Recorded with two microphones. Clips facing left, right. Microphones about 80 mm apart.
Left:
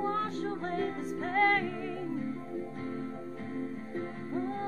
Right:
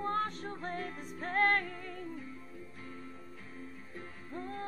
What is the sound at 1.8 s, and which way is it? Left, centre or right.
Music, left.